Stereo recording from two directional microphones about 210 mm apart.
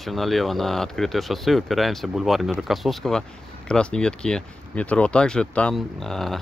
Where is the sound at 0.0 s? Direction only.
Centre (ahead or behind).